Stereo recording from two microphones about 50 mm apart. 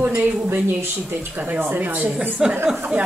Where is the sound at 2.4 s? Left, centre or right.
Centre.